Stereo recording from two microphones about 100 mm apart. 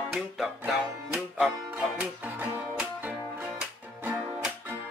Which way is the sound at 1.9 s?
15° right (ahead or behind).